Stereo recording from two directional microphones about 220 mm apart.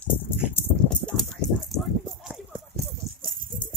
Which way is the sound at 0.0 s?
10° left (ahead or behind).